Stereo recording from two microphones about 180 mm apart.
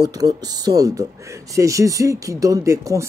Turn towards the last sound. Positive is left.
turn(degrees=-15)  # may be behind; listen again after turning